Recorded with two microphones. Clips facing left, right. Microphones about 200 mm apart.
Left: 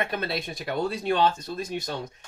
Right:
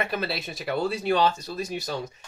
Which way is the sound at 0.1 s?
5° right (ahead or behind).